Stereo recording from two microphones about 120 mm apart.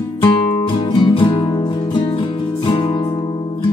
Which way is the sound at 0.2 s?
40° left (ahead or behind).